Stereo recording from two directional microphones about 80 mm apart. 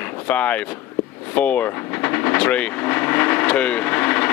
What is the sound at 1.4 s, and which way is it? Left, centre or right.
Speech, centre.